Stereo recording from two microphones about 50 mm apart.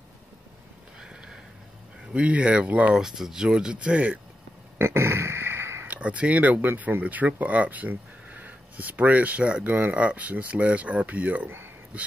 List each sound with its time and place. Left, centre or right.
1.0 s a sound: centre
2.1 s speech: right
2.9 s speech: centre; by 4.2 s right
4.7 s a sound: right
5.9 s speech: right
9.7 s speech: right